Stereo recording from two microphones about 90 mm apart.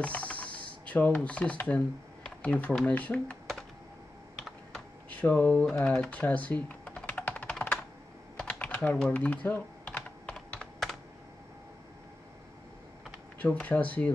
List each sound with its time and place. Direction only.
0.0 s speech: 15° left (ahead or behind)
5.1 s speech: 15° left (ahead or behind)
7.1 s computer keyboard: 20° left (ahead or behind)
8.4 s typing: 15° left (ahead or behind)
13.4 s speech: 15° left (ahead or behind)